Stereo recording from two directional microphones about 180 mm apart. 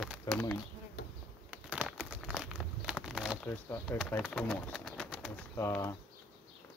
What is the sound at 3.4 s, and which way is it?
Speech, 15° left (ahead or behind).